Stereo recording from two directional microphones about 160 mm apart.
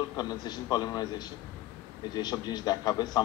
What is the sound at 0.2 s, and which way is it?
A man's voice, 25° left (ahead or behind).